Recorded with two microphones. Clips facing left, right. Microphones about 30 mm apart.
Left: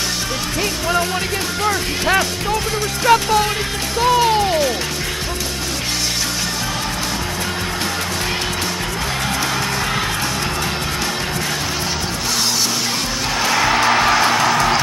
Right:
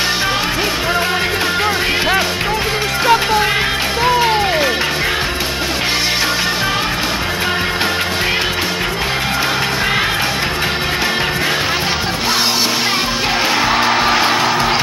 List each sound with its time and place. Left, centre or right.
3.1 s speech: centre
4.0 s music: right
13.5 s music: centre